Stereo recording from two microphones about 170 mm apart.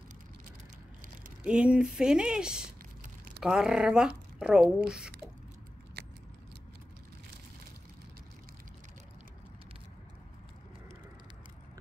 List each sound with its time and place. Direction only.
1.4 s speech: 5° right (ahead or behind)
3.0 s crumpling: 55° right (ahead or behind)
3.4 s speech: 5° right (ahead or behind)